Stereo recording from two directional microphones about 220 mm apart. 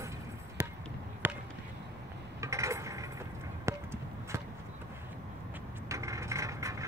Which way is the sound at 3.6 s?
15° right (ahead or behind).